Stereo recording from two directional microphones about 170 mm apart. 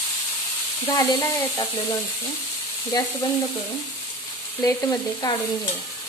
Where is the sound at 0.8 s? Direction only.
15° left (ahead or behind).